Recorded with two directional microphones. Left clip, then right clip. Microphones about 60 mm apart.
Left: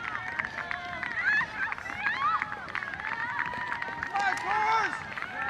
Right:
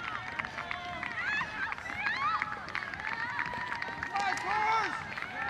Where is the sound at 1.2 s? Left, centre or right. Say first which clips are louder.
Left 7 dB; left.